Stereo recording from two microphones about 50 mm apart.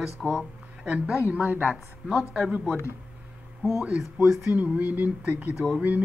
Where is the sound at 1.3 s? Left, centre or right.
Right.